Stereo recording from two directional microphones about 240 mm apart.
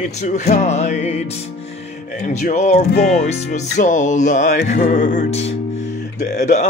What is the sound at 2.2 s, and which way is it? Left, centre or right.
Music, left.